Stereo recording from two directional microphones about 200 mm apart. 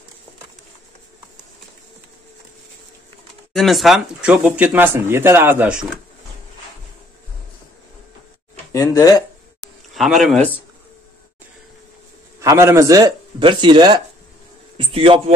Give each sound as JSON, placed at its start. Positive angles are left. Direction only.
{"t": 3.5, "sound": "speech", "side_deg": 0}
{"t": 8.7, "sound": "speech", "side_deg": 15}
{"t": 9.9, "sound": "speech", "side_deg": 0}
{"t": 12.4, "sound": "a man's voice", "side_deg": -15}